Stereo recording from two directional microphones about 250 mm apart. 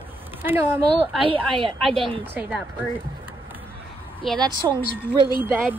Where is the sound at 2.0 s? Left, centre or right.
Right.